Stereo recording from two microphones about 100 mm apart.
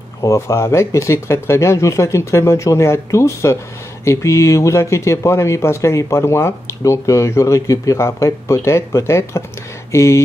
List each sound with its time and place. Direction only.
0.2 s speech: 30° left (ahead or behind)